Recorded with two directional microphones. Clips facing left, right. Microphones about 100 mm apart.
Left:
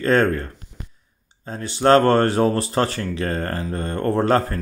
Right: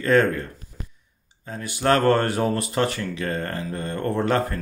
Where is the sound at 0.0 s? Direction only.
35° left (ahead or behind).